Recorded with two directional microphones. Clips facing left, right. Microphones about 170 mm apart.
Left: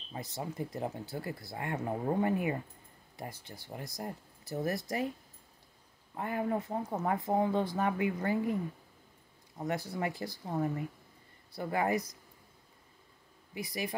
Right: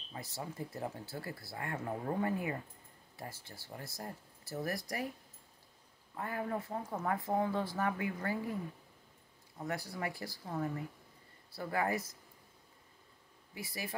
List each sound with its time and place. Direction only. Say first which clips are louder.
0.1 s speech: left 4 dB; 20° left (ahead or behind)
6.1 s speech: left 5 dB; 20° left (ahead or behind)
9.6 s speech: left 5 dB; 20° left (ahead or behind)
13.6 s speech: left 6 dB; 20° left (ahead or behind)